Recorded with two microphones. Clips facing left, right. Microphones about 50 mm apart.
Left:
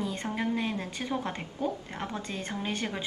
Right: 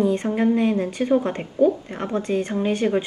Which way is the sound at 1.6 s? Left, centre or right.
Right.